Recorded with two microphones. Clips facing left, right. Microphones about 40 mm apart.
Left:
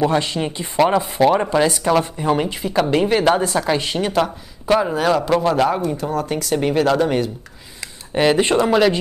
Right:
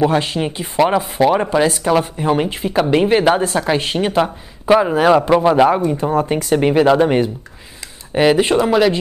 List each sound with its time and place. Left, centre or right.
0.0 s speech: centre
5.9 s speech: right
8.1 s speech: centre